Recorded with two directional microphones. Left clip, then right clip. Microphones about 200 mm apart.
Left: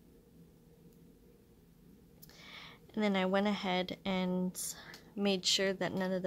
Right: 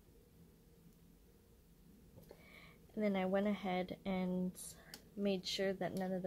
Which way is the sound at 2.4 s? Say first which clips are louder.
Left 9 dB; 10° left (ahead or behind).